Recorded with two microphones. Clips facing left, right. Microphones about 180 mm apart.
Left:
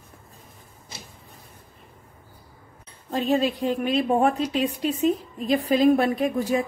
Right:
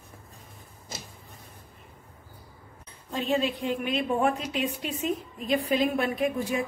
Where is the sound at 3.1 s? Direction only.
40° left (ahead or behind).